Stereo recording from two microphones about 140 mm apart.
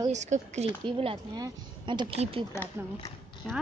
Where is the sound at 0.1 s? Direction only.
55° right (ahead or behind).